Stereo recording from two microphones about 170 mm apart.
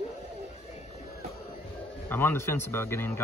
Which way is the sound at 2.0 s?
15° left (ahead or behind).